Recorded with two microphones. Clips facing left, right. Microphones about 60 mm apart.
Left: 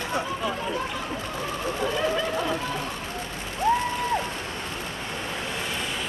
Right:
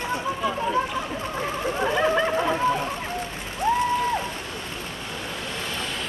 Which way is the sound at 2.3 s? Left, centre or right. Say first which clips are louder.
Right 5 dB; right.